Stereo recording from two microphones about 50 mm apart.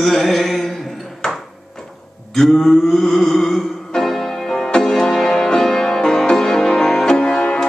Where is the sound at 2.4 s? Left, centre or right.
Centre.